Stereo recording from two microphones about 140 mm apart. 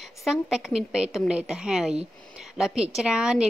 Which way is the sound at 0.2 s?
5° right (ahead or behind).